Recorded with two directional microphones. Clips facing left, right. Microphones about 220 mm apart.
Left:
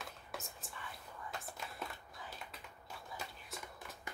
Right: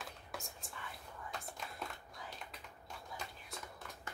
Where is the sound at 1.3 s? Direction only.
5° left (ahead or behind).